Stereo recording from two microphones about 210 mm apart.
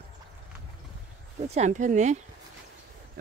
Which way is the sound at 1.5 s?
35° right (ahead or behind).